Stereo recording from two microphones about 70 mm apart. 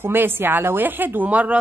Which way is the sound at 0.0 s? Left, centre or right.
Right.